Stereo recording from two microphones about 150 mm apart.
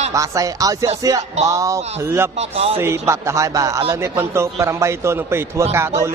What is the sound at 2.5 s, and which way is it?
Speech, 40° right (ahead or behind).